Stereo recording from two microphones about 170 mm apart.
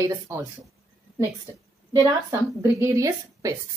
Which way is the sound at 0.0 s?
20° right (ahead or behind).